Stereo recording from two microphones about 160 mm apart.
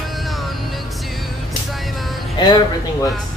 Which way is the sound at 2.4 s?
25° left (ahead or behind).